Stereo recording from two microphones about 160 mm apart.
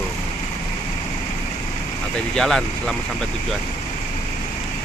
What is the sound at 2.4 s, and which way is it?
Speech, 5° left (ahead or behind).